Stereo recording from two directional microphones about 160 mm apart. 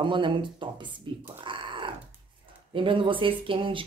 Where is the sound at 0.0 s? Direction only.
30° right (ahead or behind).